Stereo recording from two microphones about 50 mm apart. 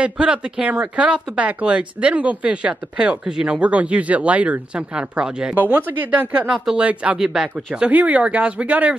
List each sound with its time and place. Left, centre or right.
0.0 s speech: centre
5.6 s speech: right
6.5 s speech: centre
6.8 s speech: right
7.2 s speech: centre
7.8 s speech: right